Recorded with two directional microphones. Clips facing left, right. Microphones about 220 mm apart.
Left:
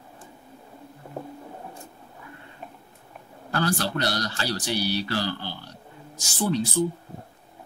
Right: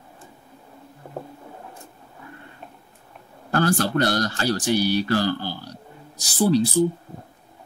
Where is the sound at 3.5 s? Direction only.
50° right (ahead or behind).